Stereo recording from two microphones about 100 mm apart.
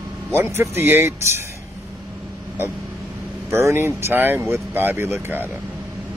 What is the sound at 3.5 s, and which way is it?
Speech, 30° right (ahead or behind).